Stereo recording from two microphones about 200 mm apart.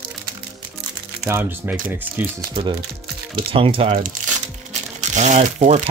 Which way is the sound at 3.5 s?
25° right (ahead or behind).